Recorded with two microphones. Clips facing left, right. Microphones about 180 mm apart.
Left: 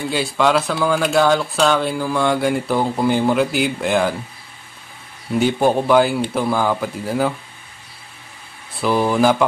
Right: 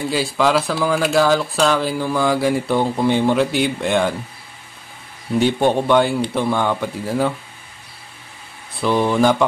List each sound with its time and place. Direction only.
0.1 s speech: centre (ahead or behind)
5.4 s speech: centre (ahead or behind)
8.8 s speech: 5° left (ahead or behind)